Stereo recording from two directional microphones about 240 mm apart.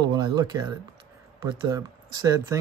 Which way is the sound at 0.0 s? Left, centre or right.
Centre.